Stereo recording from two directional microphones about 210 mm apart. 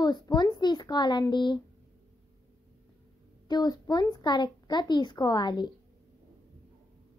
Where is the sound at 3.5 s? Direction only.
20° left (ahead or behind).